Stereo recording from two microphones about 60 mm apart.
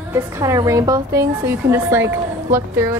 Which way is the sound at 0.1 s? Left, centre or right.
Right.